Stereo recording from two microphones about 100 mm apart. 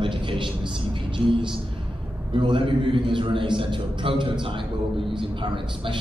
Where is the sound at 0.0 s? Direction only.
55° right (ahead or behind).